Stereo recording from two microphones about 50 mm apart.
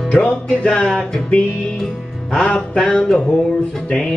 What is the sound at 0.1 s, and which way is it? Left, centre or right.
Music, centre.